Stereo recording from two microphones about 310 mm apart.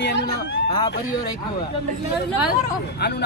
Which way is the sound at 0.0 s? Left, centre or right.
Left.